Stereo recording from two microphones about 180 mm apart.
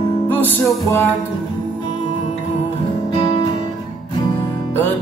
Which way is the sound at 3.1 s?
30° left (ahead or behind).